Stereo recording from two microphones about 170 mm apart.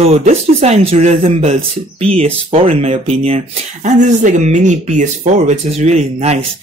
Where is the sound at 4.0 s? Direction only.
45° right (ahead or behind).